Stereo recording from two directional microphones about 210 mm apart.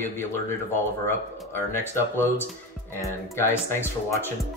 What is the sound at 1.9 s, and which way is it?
Speech, 10° left (ahead or behind).